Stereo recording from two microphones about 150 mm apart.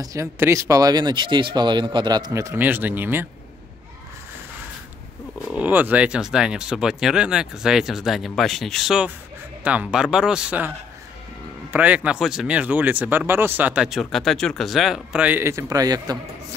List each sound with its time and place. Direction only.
0.0 s speech: 20° right (ahead or behind)
5.5 s speech: 10° right (ahead or behind)
11.7 s speech: 10° right (ahead or behind)